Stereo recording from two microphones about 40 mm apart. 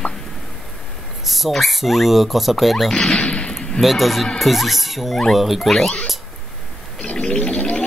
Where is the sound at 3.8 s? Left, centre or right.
Centre.